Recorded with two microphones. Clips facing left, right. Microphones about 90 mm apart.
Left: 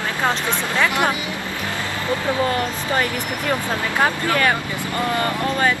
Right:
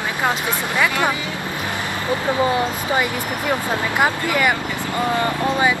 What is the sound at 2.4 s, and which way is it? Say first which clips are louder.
Speech: right 2 dB; 15° right (ahead or behind).